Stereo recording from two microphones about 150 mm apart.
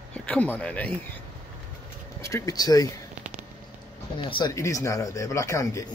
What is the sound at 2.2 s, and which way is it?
Speech, 20° left (ahead or behind).